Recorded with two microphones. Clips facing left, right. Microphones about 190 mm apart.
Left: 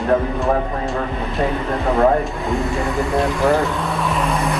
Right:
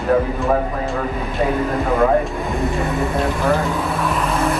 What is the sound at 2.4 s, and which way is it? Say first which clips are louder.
Speech: even; centre (ahead or behind).